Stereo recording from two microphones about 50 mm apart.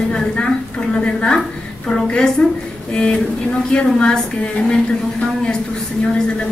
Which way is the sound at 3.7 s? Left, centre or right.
Centre.